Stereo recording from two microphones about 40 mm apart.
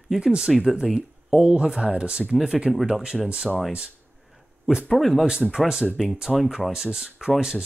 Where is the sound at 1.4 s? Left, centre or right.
Right.